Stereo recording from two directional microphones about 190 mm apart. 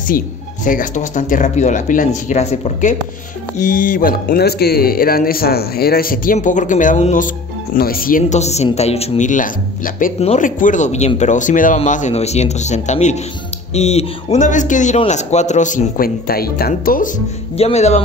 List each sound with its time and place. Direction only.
0.7 s a man's voice: 45° left (ahead or behind)
10.1 s a man's voice: 35° left (ahead or behind)
17.6 s a man's voice: 35° left (ahead or behind)